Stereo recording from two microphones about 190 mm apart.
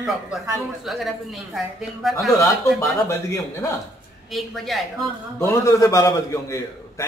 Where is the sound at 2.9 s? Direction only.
15° left (ahead or behind).